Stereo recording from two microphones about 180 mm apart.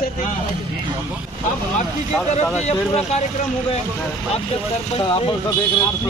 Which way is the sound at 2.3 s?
40° left (ahead or behind).